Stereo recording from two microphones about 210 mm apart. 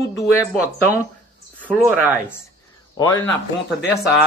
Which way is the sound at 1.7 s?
5° right (ahead or behind).